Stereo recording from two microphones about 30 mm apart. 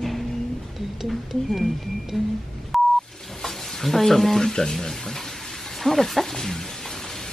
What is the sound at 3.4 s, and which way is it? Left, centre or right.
Stir, centre.